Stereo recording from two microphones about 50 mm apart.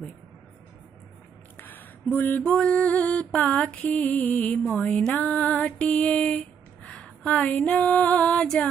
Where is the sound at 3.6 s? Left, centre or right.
Centre.